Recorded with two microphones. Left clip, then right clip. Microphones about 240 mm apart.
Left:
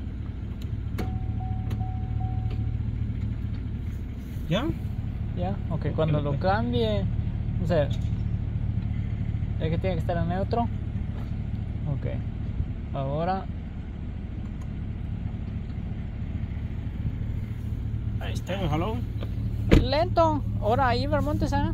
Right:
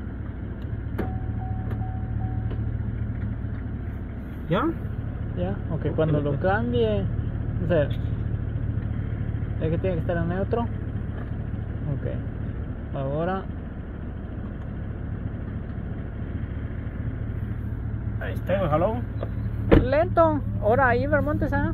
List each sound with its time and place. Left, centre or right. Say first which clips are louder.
5.4 s speech: right 2 dB; left
9.6 s speech: right 3 dB; left
12.9 s speech: right 1 dB; left
18.2 s speech: right 7 dB; left